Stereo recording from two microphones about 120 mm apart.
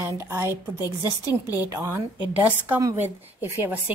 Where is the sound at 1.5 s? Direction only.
25° right (ahead or behind).